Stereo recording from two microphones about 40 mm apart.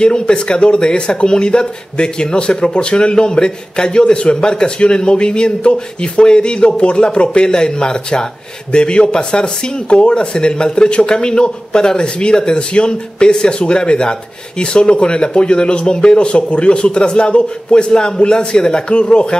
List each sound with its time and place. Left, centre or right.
0.0 s speech: left